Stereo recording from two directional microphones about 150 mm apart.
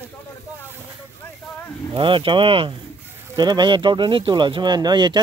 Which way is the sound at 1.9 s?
35° right (ahead or behind).